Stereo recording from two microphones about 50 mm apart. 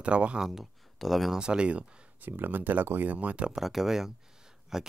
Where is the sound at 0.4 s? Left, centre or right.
Centre.